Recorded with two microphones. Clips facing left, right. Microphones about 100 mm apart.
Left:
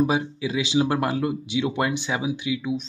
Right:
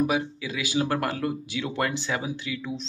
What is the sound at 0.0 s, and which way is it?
Speech, 25° left (ahead or behind).